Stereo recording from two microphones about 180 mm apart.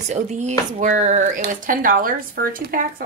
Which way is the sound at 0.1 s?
40° right (ahead or behind).